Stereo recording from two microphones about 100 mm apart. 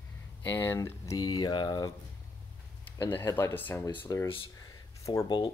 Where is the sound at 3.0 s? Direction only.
20° left (ahead or behind).